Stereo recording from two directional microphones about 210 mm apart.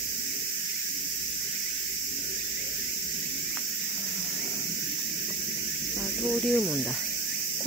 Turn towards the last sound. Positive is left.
turn(degrees=0)  # may be behind; listen again after turning